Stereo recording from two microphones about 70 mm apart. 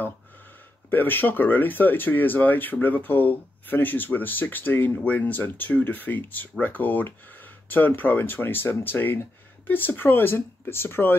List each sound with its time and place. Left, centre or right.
0.8 s speech: left